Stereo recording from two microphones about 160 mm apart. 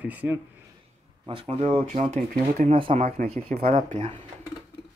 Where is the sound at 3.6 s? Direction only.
60° right (ahead or behind).